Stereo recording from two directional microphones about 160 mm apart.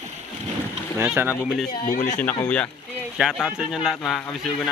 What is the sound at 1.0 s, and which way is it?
Speech, 15° right (ahead or behind).